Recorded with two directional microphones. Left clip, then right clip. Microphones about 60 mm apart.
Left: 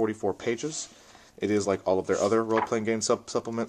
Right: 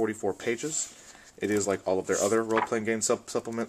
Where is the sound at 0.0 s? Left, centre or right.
Left.